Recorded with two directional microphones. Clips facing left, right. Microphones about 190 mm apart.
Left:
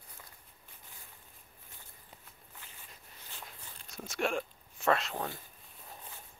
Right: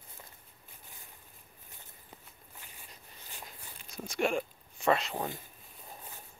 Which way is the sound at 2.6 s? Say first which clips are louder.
Right 1 dB; 15° right (ahead or behind).